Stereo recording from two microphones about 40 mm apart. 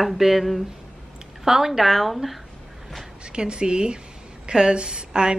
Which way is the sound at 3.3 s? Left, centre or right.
Right.